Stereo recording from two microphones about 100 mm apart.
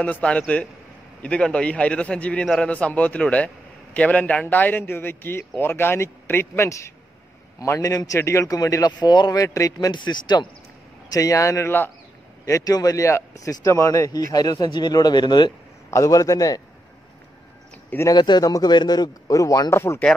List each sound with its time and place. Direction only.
0.0 s a man's voice: 10° left (ahead or behind)
2.4 s a man's voice: centre (ahead or behind)
2.7 s a man's voice: 15° left (ahead or behind); by 10.5 s 50° left (ahead or behind)
11.1 s speech: 35° left (ahead or behind)
12.4 s speech: 35° left (ahead or behind)
15.9 s speech: 35° left (ahead or behind)
17.8 s speech: 25° left (ahead or behind)
18.1 s speech: 45° left (ahead or behind); by 20.0 s 25° left (ahead or behind)